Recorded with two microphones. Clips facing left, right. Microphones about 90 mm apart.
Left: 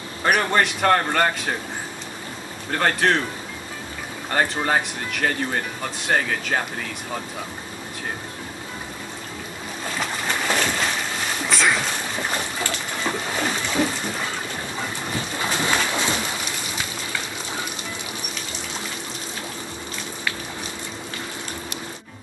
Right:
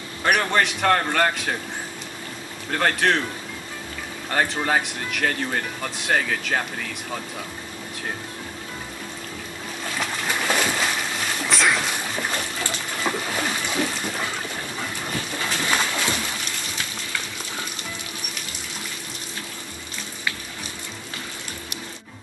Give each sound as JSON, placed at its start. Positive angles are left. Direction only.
{"t": 0.2, "sound": "speech", "side_deg": 5}
{"t": 2.8, "sound": "speech", "side_deg": 5}
{"t": 4.3, "sound": "speech", "side_deg": 5}
{"t": 9.9, "sound": "a sound", "side_deg": -5}
{"t": 11.4, "sound": "boat", "side_deg": 0}
{"t": 13.8, "sound": "water", "side_deg": 5}
{"t": 15.1, "sound": "boat", "side_deg": 20}